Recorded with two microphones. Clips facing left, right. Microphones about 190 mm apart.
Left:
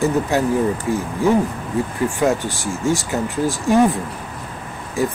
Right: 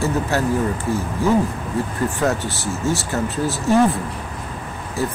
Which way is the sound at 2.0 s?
15° left (ahead or behind).